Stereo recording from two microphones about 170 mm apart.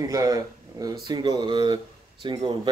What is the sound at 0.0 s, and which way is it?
Speech, 20° right (ahead or behind).